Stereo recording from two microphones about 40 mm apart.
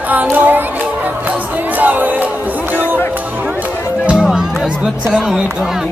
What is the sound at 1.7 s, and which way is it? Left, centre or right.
Music, right.